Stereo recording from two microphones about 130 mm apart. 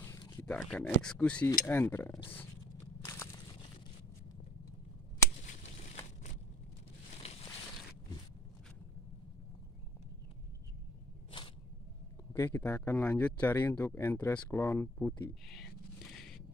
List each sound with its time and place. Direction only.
0.4 s a sound: 10° left (ahead or behind)
0.7 s speech: 5° left (ahead or behind)
3.1 s crushing: 20° left (ahead or behind)
5.6 s crushing: 60° left (ahead or behind)
12.3 s speech: 20° left (ahead or behind)
15.4 s a sound: centre (ahead or behind)